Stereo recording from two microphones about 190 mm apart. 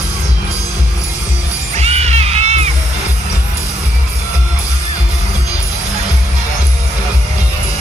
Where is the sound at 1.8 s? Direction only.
35° right (ahead or behind).